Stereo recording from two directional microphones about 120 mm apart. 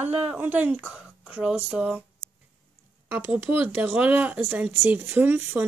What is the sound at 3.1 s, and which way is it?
Speech, 15° right (ahead or behind).